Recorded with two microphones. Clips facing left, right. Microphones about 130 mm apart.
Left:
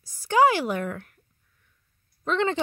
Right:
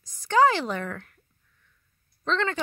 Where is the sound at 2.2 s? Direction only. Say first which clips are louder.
Left 2 dB; 15° left (ahead or behind).